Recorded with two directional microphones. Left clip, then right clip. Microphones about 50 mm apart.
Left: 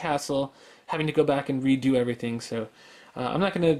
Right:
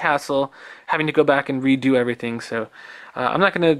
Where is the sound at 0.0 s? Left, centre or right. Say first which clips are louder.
Right 7 dB; right.